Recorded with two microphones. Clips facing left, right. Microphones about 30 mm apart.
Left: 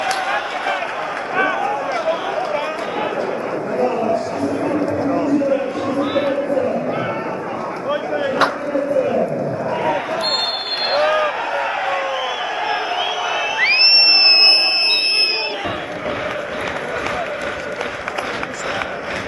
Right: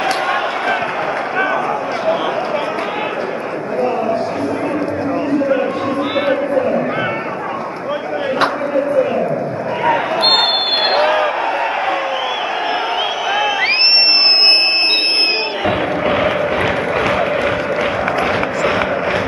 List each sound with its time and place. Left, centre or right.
0.0 s a sound: centre
9.8 s basketball bounce: right
10.9 s a sound: right
13.3 s crowd: centre
16.1 s vehicle: right
17.0 s applause: right